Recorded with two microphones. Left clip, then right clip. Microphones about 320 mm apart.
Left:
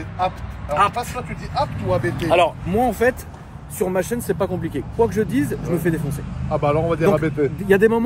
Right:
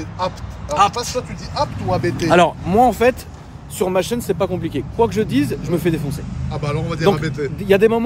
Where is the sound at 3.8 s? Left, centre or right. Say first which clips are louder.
Right 3 dB; centre.